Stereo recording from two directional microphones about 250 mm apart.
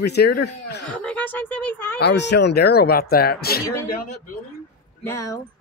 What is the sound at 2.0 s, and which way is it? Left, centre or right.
Speech, left.